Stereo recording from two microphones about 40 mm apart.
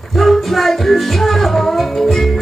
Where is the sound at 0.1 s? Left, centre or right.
Centre.